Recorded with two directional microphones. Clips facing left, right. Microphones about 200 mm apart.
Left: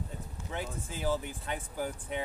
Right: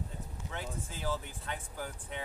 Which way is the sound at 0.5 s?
15° left (ahead or behind).